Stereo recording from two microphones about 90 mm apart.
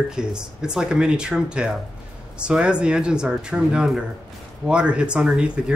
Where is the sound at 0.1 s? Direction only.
10° right (ahead or behind).